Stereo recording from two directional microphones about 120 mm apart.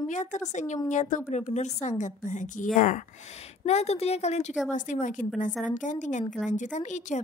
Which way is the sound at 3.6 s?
65° left (ahead or behind).